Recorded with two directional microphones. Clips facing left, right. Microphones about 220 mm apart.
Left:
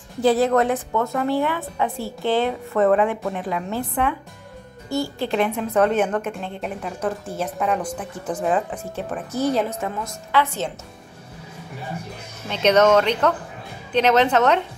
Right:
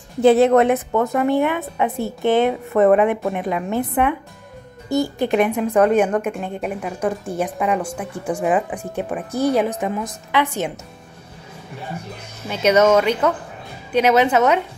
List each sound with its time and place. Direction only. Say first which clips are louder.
0.2 s a woman's voice: right 5 dB; 25° right (ahead or behind)
12.4 s speech: right 1 dB; 10° right (ahead or behind)